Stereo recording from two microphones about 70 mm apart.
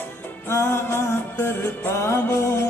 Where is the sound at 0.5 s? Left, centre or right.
Left.